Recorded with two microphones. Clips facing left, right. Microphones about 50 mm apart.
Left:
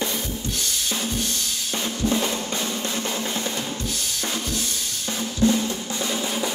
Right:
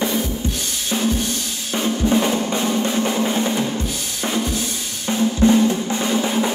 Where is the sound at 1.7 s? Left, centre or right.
Right.